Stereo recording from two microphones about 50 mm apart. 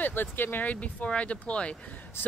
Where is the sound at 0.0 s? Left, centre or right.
Left.